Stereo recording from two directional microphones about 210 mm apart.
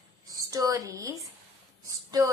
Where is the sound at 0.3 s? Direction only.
15° right (ahead or behind).